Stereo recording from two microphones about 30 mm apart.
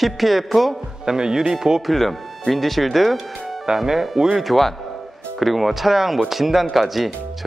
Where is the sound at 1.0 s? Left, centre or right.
Right.